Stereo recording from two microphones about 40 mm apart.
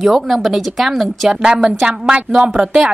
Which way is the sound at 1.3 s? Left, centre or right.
Right.